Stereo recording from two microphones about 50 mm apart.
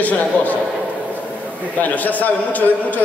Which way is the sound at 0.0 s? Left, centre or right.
Left.